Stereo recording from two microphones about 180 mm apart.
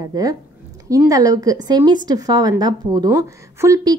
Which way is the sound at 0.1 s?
20° right (ahead or behind).